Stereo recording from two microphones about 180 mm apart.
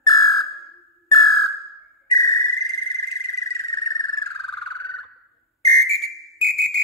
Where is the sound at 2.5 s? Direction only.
Centre (ahead or behind).